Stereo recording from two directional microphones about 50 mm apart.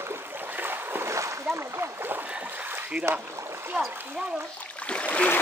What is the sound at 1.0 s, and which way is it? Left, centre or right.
Splash, right.